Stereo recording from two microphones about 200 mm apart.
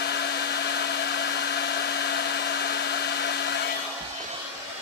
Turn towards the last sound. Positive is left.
turn(degrees=55)  # may be behind; listen again after turning